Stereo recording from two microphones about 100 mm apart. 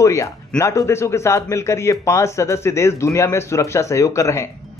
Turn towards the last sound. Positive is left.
turn(degrees=30)  # may be behind; listen again after turning